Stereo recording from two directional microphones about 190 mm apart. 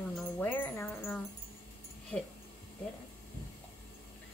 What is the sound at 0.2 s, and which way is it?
Music, 10° left (ahead or behind).